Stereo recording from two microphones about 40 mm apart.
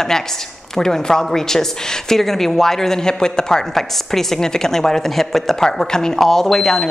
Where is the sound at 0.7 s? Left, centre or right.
Centre.